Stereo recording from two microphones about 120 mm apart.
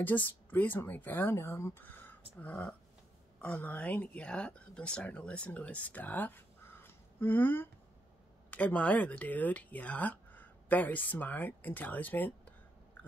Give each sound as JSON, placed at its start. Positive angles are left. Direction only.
{"t": 0.0, "sound": "speech", "side_deg": 15}